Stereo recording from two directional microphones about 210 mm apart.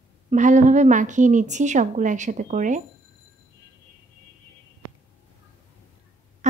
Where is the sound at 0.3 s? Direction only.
35° right (ahead or behind).